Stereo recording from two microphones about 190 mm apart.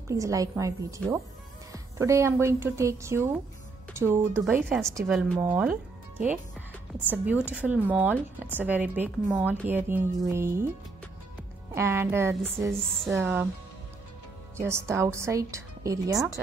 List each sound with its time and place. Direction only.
0.1 s speech: 15° right (ahead or behind)
3.9 s music: 15° right (ahead or behind)
4.6 s speech: 10° right (ahead or behind)
11.7 s speech: 15° right (ahead or behind)
14.6 s speech: 15° right (ahead or behind)